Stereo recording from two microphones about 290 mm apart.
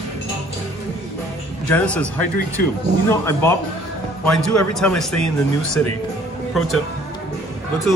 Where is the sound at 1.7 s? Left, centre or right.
Centre.